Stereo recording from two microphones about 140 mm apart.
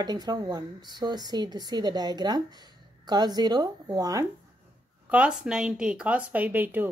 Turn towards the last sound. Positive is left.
turn(degrees=-15)  # may be behind; listen again after turning